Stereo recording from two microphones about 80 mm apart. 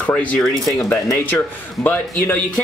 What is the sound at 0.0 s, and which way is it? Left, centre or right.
Speech, centre.